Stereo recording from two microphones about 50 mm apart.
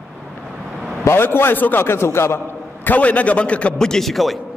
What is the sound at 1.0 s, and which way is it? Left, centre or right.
Speech, left.